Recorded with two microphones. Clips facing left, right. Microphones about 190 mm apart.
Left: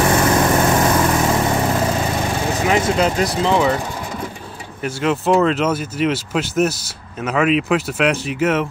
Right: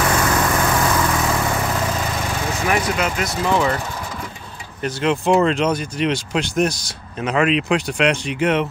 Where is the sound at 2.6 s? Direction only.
20° left (ahead or behind).